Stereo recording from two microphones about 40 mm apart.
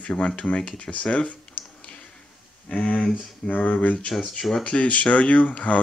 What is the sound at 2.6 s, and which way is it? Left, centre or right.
Speech, left.